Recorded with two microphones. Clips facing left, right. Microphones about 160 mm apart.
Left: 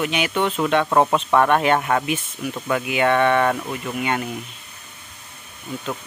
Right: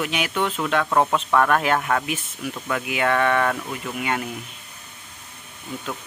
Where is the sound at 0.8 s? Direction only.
15° left (ahead or behind).